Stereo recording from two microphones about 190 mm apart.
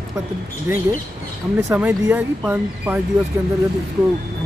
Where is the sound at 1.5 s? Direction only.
10° right (ahead or behind).